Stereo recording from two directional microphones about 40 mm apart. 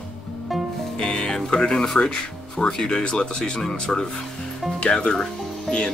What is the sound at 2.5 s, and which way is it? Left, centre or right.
Speech, centre.